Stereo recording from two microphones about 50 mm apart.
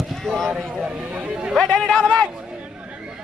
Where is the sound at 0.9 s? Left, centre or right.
Centre.